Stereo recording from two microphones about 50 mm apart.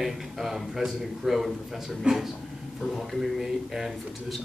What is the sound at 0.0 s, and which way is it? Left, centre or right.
Speech, centre.